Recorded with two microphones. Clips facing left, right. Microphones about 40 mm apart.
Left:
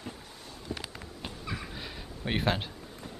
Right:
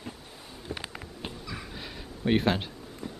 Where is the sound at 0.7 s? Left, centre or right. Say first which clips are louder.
Right 2 dB; centre.